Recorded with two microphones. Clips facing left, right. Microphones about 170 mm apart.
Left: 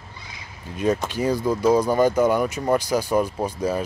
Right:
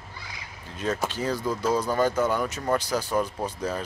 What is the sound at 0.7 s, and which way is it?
Speech, 15° left (ahead or behind).